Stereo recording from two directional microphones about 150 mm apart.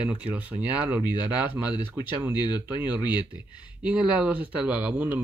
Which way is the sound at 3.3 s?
10° right (ahead or behind).